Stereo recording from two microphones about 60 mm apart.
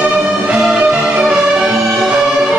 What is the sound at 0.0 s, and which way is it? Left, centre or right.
Music, centre.